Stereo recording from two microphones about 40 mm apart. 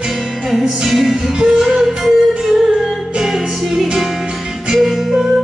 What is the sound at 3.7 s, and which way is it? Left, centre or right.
Music, centre.